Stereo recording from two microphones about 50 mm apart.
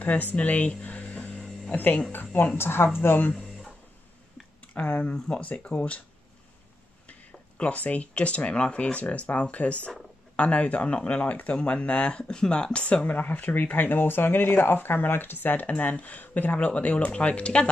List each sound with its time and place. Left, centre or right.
0.0 s speech: left
0.8 s a sound: left
2.1 s a woman's voice: left
4.7 s speech: left
7.1 s speech: left
13.0 s speech: left
15.7 s speech: left
16.5 s speech: left